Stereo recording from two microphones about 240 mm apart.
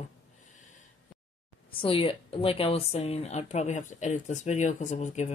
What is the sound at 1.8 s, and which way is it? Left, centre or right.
Speech, left.